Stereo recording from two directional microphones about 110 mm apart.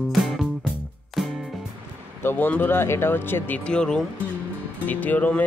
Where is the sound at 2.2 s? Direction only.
20° left (ahead or behind).